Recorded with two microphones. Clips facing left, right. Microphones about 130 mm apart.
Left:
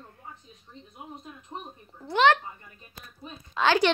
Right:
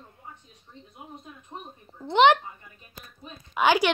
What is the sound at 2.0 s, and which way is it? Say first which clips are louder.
Speech: right 3 dB; 20° right (ahead or behind).